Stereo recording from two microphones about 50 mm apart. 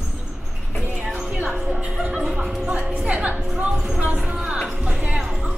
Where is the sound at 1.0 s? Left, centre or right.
Centre.